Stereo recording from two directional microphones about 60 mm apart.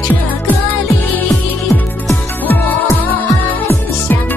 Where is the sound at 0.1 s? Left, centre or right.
Left.